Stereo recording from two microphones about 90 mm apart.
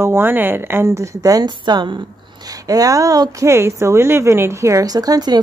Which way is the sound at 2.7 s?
40° right (ahead or behind).